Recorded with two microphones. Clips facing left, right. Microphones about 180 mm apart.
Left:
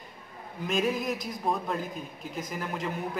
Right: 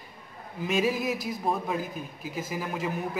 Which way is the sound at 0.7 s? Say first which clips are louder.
Right 2 dB; 5° right (ahead or behind).